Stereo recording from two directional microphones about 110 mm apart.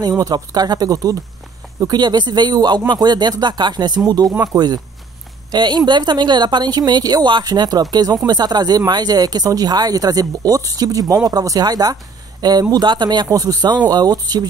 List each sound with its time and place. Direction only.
0.2 s a woman's voice: 35° right (ahead or behind)